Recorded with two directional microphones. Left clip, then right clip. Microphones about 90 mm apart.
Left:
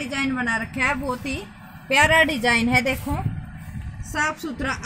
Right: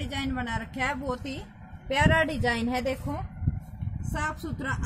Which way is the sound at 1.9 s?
10° right (ahead or behind).